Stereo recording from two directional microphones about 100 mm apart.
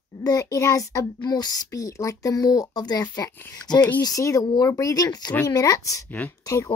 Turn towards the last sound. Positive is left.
turn(degrees=35)  # may be behind; listen again after turning